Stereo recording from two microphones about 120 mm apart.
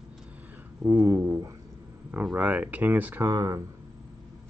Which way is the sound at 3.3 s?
30° right (ahead or behind).